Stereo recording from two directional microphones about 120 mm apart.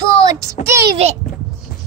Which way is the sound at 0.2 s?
25° right (ahead or behind).